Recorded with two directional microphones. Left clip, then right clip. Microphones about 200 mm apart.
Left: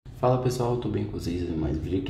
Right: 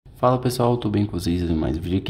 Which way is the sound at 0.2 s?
40° right (ahead or behind).